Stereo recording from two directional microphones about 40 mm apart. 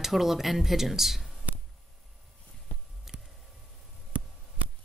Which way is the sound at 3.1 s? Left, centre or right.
Centre.